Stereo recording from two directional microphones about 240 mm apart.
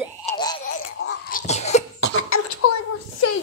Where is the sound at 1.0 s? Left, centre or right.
Left.